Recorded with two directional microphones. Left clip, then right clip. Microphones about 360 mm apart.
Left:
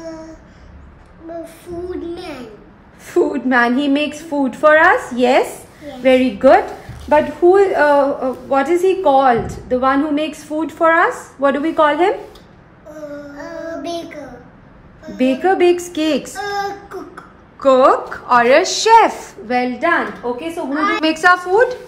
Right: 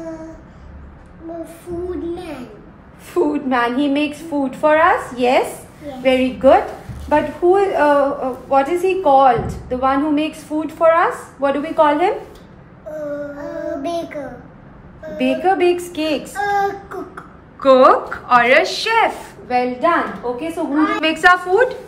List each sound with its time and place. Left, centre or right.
3.1 s a woman's voice: left
13.4 s child singing: centre
15.1 s a woman's voice: left
16.3 s child singing: centre
17.6 s a woman's voice: centre; by 20.4 s left
20.8 s a woman's voice: centre